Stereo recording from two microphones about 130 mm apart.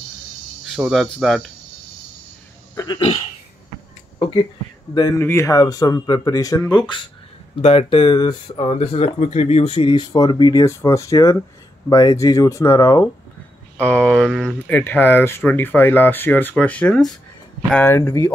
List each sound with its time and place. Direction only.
0.7 s cricket: 5° right (ahead or behind)
2.7 s a sound: 25° left (ahead or behind)
4.2 s a sound: 35° left (ahead or behind)
5.2 s speech: 20° left (ahead or behind)
7.5 s speech: 45° left (ahead or behind); by 13.1 s 25° left (ahead or behind)
13.7 s speech: 10° left (ahead or behind)
17.9 s speech: 20° left (ahead or behind)